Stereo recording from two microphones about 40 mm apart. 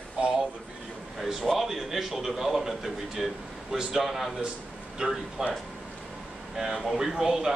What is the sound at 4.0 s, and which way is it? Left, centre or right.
Speech, centre.